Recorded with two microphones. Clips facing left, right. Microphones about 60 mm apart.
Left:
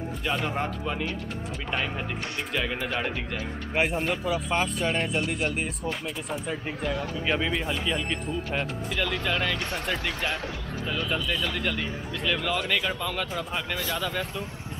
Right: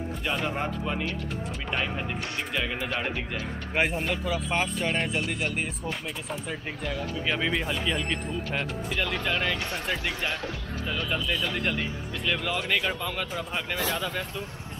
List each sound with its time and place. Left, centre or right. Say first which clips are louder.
0.2 s speech: left 1 dB; centre
2.5 s speech: left 2 dB; centre
4.5 s speech: left 1 dB; right
4.9 s speech: left 1 dB; centre
7.2 s speech: left 1 dB; centre
9.3 s speech: even; centre